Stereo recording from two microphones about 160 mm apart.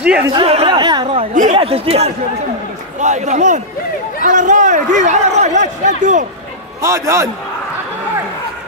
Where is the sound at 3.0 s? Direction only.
50° right (ahead or behind).